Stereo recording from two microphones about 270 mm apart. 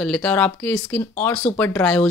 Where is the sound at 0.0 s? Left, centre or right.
Centre.